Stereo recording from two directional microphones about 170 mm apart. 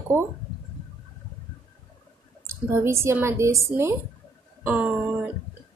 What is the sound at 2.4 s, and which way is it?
A woman's voice, 15° right (ahead or behind).